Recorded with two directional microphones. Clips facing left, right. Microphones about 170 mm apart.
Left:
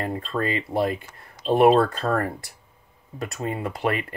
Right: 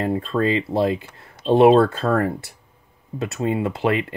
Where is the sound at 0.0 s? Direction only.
25° right (ahead or behind).